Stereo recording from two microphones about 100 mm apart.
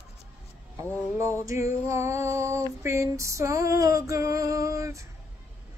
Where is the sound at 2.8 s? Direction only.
30° right (ahead or behind).